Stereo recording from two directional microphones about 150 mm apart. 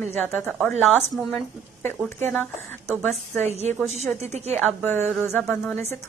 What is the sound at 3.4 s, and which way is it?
A woman's voice, 45° right (ahead or behind).